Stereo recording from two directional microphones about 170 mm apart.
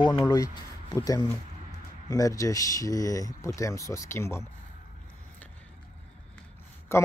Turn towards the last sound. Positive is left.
turn(degrees=15)  # may be behind; listen again after turning